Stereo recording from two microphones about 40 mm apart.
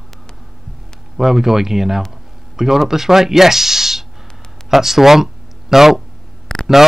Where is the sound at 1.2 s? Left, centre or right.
Centre.